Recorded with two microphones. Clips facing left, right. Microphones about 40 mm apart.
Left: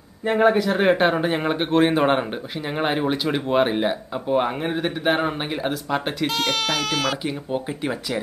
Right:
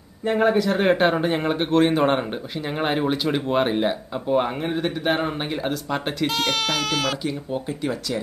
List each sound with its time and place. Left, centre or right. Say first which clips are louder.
0.2 s speech: left 1 dB; centre
7.2 s speech: left 1 dB; left